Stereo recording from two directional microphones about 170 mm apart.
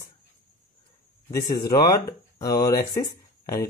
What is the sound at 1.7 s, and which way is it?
Speech, 20° left (ahead or behind).